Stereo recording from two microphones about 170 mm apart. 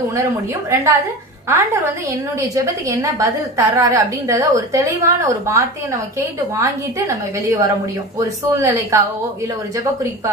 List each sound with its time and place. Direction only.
0.1 s a woman's voice: 20° right (ahead or behind)